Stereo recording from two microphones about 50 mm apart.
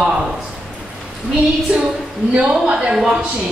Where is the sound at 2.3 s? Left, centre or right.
Right.